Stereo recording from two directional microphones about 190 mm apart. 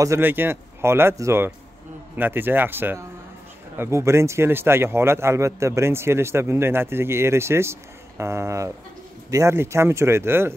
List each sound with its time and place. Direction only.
0.0 s a man's voice: 10° right (ahead or behind)